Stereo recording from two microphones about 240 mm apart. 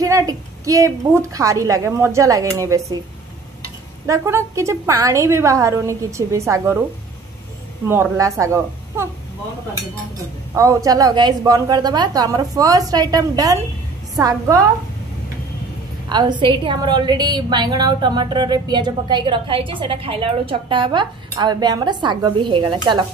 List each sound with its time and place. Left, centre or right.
0.0 s a woman's voice: centre
4.1 s a woman's voice: centre
7.9 s a woman's voice: centre
10.5 s a woman's voice: centre
16.1 s a woman's voice: centre